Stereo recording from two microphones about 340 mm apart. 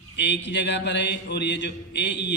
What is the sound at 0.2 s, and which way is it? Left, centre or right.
Mantra, left.